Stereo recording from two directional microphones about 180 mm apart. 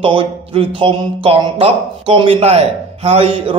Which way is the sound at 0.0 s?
30° right (ahead or behind).